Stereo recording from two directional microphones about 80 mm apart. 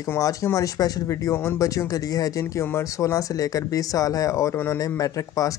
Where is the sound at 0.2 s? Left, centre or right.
Left.